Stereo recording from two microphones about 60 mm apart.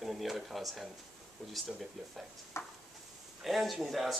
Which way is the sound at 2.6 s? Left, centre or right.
Left.